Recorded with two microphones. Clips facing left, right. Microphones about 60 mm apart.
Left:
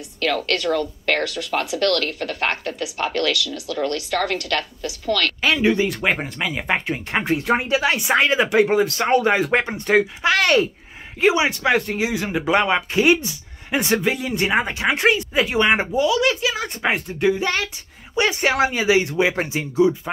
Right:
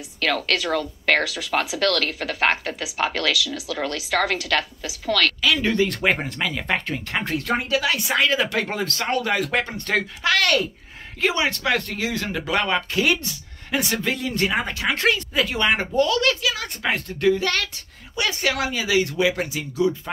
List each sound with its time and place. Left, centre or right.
0.2 s a woman's voice: centre
5.6 s speech: centre
6.5 s speech: centre
13.7 s speech: left
14.0 s speech: centre
15.9 s speech: centre
16.3 s speech: left